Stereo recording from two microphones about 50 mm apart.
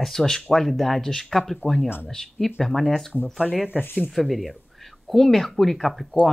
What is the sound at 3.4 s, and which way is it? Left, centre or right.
Speech, centre.